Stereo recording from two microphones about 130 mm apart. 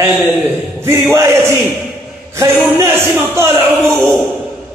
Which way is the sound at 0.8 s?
20° right (ahead or behind).